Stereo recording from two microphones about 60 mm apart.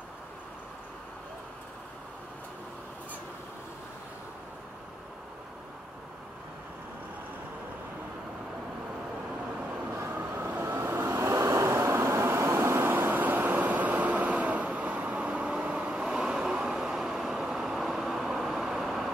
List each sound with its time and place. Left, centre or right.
9.9 s vehicle: right; by 19.1 s centre